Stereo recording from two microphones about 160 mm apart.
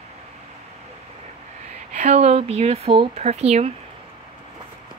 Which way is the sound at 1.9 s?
50° right (ahead or behind).